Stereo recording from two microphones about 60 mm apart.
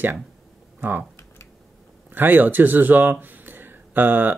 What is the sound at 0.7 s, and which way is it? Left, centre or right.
Speech, right.